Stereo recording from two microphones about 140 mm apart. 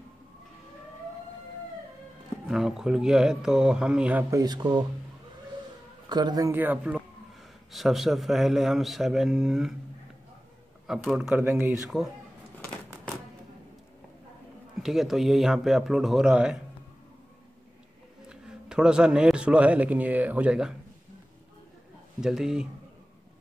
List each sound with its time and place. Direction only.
2.4 s a man's voice: 5° right (ahead or behind)
4.3 s speech: 30° right (ahead or behind)
6.0 s speech: 30° right (ahead or behind)
6.5 s a man's voice: 10° right (ahead or behind)
10.9 s a man's voice: 5° right (ahead or behind)
11.4 s a man's voice: 15° right (ahead or behind)
11.8 s a man's voice: 5° right (ahead or behind)
14.8 s a man's voice: centre (ahead or behind)
18.3 s a man's voice: 5° right (ahead or behind)
22.2 s a man's voice: 5° right (ahead or behind)